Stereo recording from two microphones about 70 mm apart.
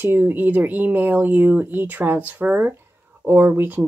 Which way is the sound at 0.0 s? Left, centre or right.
Right.